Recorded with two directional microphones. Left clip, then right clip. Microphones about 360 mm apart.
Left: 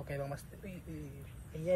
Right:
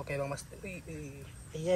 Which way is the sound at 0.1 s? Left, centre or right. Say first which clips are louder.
Right 5 dB; right.